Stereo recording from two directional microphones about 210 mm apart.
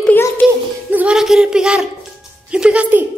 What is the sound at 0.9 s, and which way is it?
A woman's voice, 5° right (ahead or behind).